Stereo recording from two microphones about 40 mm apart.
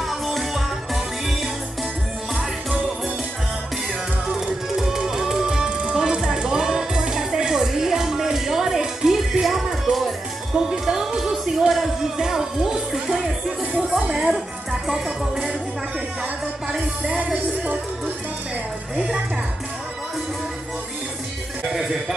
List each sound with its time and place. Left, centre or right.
0.0 s music: centre
4.3 s music: centre
9.9 s music: right
10.5 s music: centre
13.8 s speech: centre
17.2 s music: right
21.7 s music: centre